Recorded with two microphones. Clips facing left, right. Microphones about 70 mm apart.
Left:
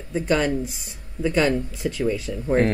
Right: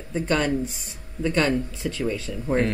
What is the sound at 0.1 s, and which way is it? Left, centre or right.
Speech, centre.